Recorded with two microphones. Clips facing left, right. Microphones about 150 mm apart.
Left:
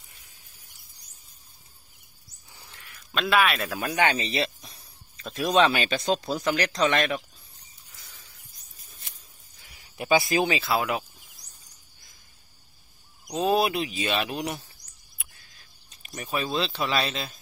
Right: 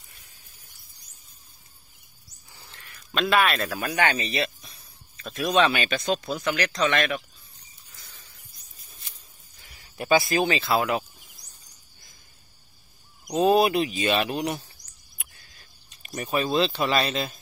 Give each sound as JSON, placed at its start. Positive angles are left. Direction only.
{"t": 2.7, "sound": "a sound", "side_deg": 5}
{"t": 5.6, "sound": "speech", "side_deg": 30}
{"t": 9.9, "sound": "speech", "side_deg": 15}
{"t": 13.3, "sound": "speech", "side_deg": 0}
{"t": 15.2, "sound": "a sound", "side_deg": 0}
{"t": 16.2, "sound": "speech", "side_deg": 0}